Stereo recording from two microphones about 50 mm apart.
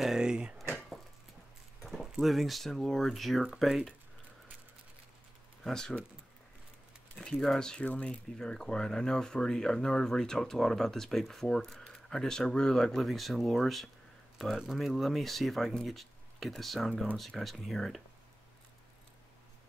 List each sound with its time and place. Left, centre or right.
0.0 s a sound: centre
1.8 s keys jangling: centre
2.2 s speech: centre
5.6 s speech: centre
7.2 s speech: centre
7.8 s speech: left
8.4 s speech: centre